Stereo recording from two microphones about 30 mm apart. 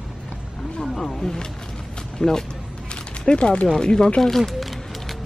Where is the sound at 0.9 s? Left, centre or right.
Centre.